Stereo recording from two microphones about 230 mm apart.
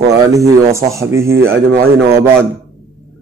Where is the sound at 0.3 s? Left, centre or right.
Centre.